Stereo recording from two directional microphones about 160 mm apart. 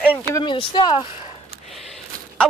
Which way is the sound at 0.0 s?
10° left (ahead or behind).